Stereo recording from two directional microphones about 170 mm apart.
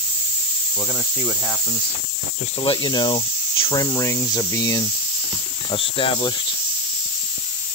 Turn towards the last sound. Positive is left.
turn(degrees=30)  # may be behind; listen again after turning